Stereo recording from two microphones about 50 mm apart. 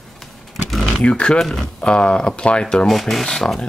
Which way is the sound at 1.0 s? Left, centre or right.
Left.